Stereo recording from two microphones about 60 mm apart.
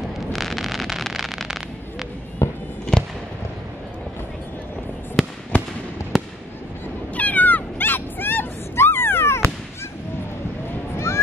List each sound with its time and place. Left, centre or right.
0.3 s a sound: centre
2.4 s fireworks: left
5.2 s fireworks: centre
5.5 s fireworks: left
6.1 s fireworks: centre
7.2 s cat: left